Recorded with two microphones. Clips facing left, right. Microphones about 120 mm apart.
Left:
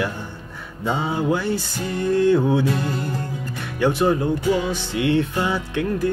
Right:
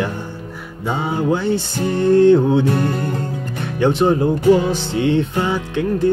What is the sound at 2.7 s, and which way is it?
Music, 55° right (ahead or behind).